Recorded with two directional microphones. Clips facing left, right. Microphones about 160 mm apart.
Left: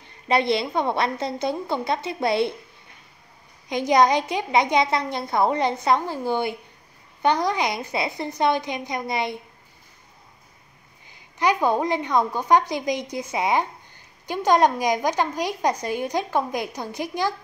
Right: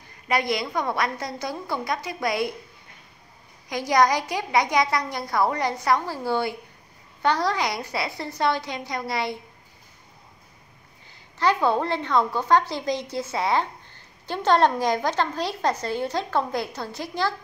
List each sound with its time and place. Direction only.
0.3 s a woman's voice: 25° left (ahead or behind)
3.6 s a woman's voice: 20° left (ahead or behind)
11.1 s a woman's voice: 15° left (ahead or behind)